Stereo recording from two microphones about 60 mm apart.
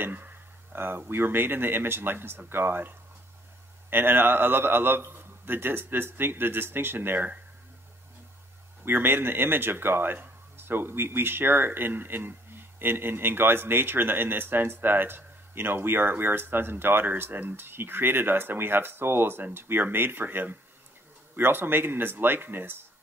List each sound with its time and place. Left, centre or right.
0.0 s speech: right
8.8 s speech: right